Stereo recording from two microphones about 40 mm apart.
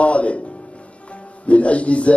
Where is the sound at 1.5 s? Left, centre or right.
Left.